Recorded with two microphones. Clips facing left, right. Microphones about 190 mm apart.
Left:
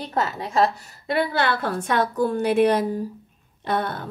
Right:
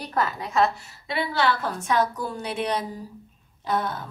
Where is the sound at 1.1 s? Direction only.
55° left (ahead or behind).